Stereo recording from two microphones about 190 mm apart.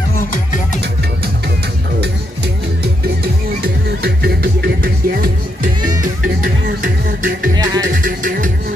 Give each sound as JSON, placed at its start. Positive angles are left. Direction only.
{"t": 3.6, "sound": "music", "side_deg": -55}
{"t": 7.5, "sound": "music", "side_deg": -20}
{"t": 7.8, "sound": "music", "side_deg": -45}